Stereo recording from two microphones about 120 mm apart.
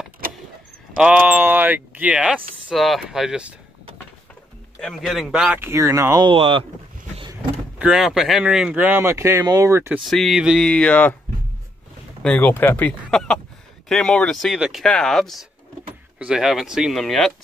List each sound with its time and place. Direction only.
0.9 s speech: 10° right (ahead or behind)
2.3 s speech: centre (ahead or behind)
4.8 s speech: centre (ahead or behind); by 6.2 s 25° right (ahead or behind)
6.2 s speech: 45° right (ahead or behind)
7.8 s speech: 5° right (ahead or behind); by 9.9 s 25° right (ahead or behind)
9.9 s speech: centre (ahead or behind)
10.7 s speech: 10° left (ahead or behind)
12.2 s speech: 10° left (ahead or behind)
13.1 s speech: 5° left (ahead or behind)